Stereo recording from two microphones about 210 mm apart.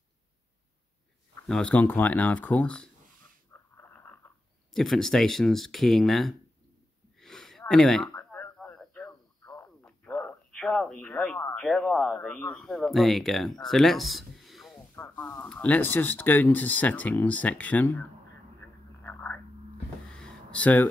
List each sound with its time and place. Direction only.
1.5 s speech: 5° left (ahead or behind)
3.7 s purr: 10° left (ahead or behind)
4.7 s speech: centre (ahead or behind)
7.2 s a sound: centre (ahead or behind)
9.4 s radio: 15° left (ahead or behind)
9.8 s speech: 10° left (ahead or behind)
18.6 s radio: 10° left (ahead or behind)
20.1 s a sound: 5° left (ahead or behind)